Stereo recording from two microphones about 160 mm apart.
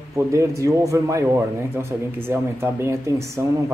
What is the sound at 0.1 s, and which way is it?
A man's voice, 20° right (ahead or behind).